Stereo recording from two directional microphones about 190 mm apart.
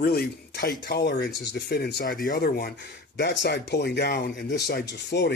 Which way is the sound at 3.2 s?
65° left (ahead or behind).